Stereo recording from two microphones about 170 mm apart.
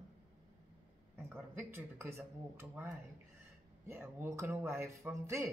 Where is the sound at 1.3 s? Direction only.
15° right (ahead or behind).